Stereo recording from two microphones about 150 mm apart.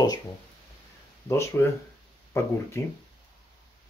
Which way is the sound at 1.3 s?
15° left (ahead or behind).